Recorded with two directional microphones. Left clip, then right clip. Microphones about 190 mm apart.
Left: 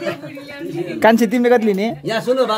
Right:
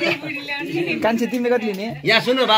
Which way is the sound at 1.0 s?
60° left (ahead or behind).